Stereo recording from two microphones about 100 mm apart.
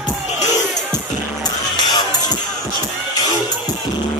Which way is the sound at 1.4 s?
45° left (ahead or behind).